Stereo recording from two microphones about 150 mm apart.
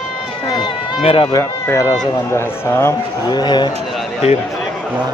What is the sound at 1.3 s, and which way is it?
A man's voice, 25° left (ahead or behind).